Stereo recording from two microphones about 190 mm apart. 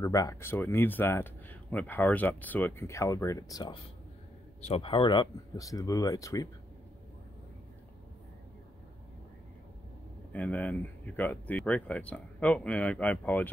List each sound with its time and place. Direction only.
0.0 s speech: 15° left (ahead or behind)
4.6 s speech: 30° left (ahead or behind)
10.3 s speech: 5° left (ahead or behind)